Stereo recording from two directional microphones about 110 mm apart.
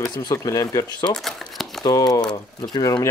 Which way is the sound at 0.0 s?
35° left (ahead or behind).